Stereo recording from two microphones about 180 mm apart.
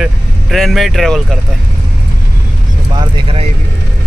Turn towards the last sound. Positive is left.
turn(degrees=-30)  # may be behind; listen again after turning